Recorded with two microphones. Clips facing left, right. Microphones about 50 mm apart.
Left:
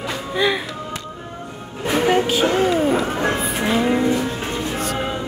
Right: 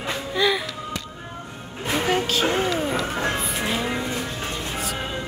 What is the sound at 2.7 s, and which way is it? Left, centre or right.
Music, centre.